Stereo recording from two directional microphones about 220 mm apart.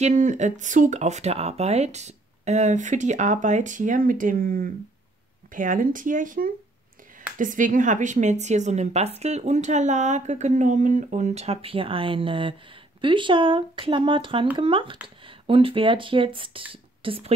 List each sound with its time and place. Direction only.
0.0 s a woman's voice: 35° right (ahead or behind)